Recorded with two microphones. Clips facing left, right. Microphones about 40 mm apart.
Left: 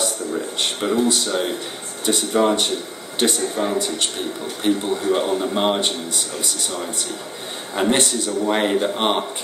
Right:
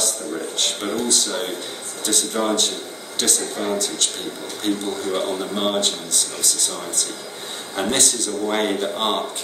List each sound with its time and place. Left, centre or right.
0.6 s a man's voice: centre